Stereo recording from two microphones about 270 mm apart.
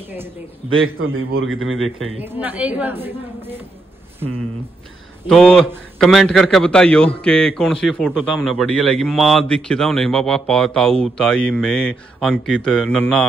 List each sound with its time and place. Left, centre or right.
0.9 s a man's voice: right
2.2 s a woman's voice: centre
5.3 s a man's voice: centre